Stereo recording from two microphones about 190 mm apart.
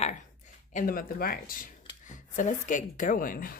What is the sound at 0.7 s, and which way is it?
A woman's voice, 50° left (ahead or behind).